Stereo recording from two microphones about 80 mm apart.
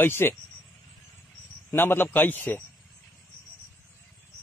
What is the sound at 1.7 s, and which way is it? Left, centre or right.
Speech, left.